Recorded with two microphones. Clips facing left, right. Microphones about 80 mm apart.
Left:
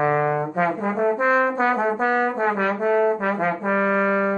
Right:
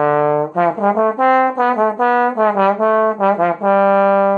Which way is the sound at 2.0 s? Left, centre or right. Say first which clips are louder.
Right 7 dB; right.